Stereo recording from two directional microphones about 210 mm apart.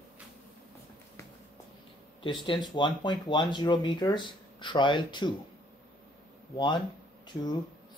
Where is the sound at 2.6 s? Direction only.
20° left (ahead or behind).